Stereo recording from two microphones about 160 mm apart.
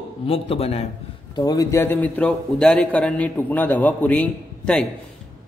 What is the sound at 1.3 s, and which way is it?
A man's voice, 25° left (ahead or behind).